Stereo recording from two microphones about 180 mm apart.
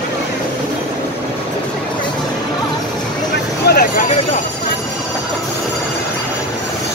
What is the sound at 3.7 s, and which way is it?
Vehicle, 55° left (ahead or behind).